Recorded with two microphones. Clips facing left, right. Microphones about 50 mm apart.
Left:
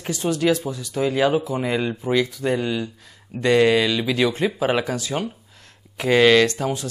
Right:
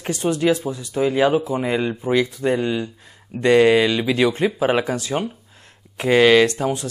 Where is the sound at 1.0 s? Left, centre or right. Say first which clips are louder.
Right 2 dB; centre.